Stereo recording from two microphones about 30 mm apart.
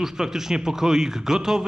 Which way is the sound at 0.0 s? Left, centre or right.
Centre.